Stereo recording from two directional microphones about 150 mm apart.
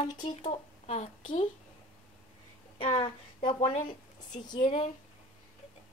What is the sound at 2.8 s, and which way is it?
Speech, 40° left (ahead or behind).